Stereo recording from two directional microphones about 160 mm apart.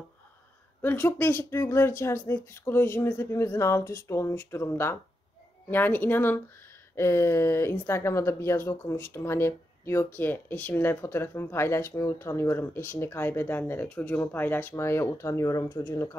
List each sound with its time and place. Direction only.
0.8 s speech: 10° left (ahead or behind)